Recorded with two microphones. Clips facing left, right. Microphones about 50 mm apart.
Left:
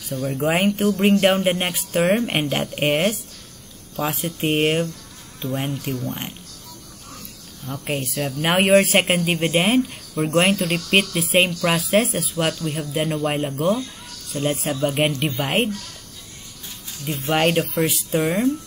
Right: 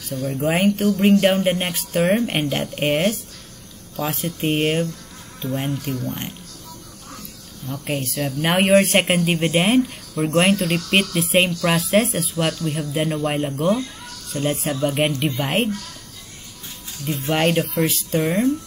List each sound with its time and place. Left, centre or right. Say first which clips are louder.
0.1 s speech: even; centre
7.6 s speech: right 1 dB; centre
17.0 s speech: even; centre